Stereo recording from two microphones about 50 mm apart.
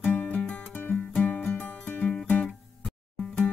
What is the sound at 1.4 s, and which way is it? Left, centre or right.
Music, left.